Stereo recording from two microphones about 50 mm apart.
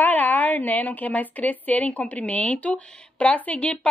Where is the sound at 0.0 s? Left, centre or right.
Left.